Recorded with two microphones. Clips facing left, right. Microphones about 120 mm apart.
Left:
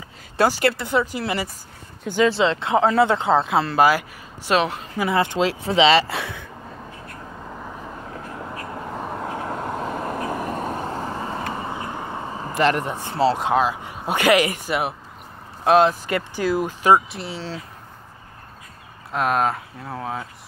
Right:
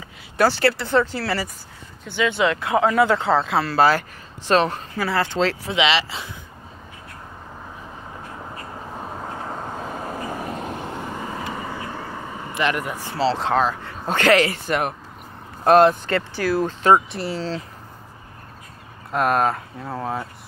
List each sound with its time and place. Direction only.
0.5 s speech: 20° left (ahead or behind)
2.0 s speech: 40° left (ahead or behind)
2.3 s speech: 25° left (ahead or behind)
4.5 s speech: 10° left (ahead or behind)
5.6 s speech: 35° left (ahead or behind)
6.0 s speech: 65° left (ahead or behind)
8.7 s vehicle: 85° left; by 10.4 s 65° left (ahead or behind)
10.7 s vehicle: 40° left (ahead or behind)
11.5 s a sound: 25° left (ahead or behind)
12.9 s speech: 20° left (ahead or behind); by 16.0 s centre (ahead or behind)
16.1 s speech: 15° left (ahead or behind)
17.1 s speech: centre (ahead or behind)
19.1 s speech: centre (ahead or behind)